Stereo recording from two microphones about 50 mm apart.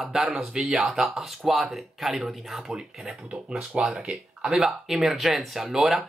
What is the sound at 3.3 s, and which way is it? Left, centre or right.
Speech, centre.